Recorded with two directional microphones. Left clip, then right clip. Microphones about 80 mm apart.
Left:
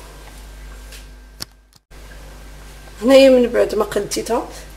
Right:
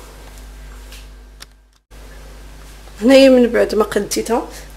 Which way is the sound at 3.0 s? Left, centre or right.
Right.